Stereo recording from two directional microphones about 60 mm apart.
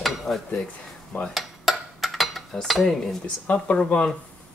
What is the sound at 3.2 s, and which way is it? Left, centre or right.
Speech, left.